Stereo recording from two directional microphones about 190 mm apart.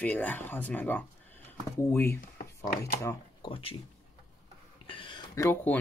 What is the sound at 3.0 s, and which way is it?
Speech, 25° left (ahead or behind).